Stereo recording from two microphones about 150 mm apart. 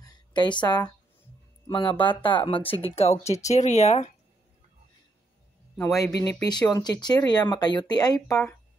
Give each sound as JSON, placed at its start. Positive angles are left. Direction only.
{"t": 0.0, "sound": "speech", "side_deg": 30}
{"t": 5.8, "sound": "speech", "side_deg": 20}